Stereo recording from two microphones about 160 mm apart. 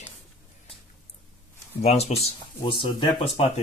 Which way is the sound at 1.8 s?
40° left (ahead or behind).